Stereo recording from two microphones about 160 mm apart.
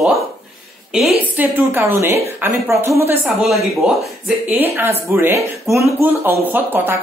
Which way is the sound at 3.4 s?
Centre (ahead or behind).